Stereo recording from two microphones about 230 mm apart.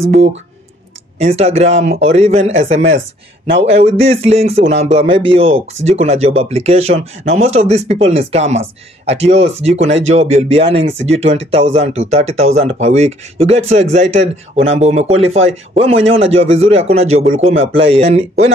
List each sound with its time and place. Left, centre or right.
0.0 s speech: right
3.4 s speech: right
3.7 s speech: right